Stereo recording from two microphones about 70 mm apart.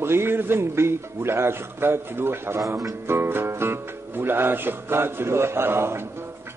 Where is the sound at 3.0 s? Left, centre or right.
Right.